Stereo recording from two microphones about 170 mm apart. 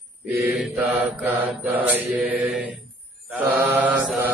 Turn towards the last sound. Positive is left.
turn(degrees=-10)  # may be behind; listen again after turning